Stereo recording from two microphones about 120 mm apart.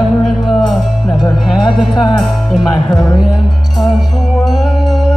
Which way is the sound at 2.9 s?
30° left (ahead or behind).